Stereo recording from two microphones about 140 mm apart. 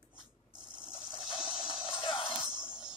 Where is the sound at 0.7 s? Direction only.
40° left (ahead or behind).